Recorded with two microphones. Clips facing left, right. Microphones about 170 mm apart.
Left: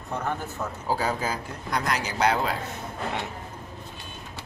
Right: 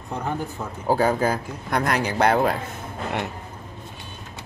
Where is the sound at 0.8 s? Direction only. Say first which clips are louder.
Right 8 dB; 55° right (ahead or behind).